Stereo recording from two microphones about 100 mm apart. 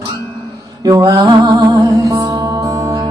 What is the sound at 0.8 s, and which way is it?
Music, 30° right (ahead or behind).